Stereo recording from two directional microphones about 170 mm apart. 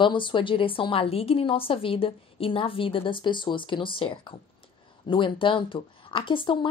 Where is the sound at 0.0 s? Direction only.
30° left (ahead or behind).